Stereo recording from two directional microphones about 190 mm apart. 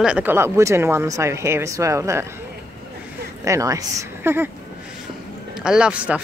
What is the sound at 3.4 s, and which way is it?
Speech, 15° right (ahead or behind).